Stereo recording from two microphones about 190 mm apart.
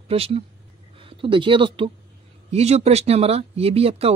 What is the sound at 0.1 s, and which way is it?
A woman's voice, 30° right (ahead or behind).